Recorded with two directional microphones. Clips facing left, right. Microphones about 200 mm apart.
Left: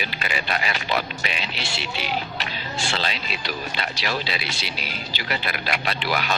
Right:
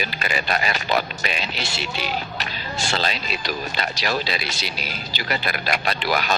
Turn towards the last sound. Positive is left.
turn(degrees=-40)  # may be behind; listen again after turning